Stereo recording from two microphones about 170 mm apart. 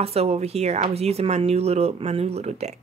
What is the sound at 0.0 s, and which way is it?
Speech, 35° right (ahead or behind).